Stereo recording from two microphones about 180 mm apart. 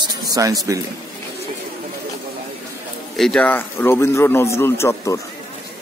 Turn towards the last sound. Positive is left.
turn(degrees=15)  # may be behind; listen again after turning